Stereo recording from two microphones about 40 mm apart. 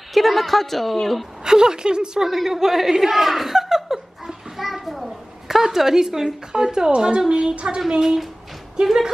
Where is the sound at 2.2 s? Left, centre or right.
Centre.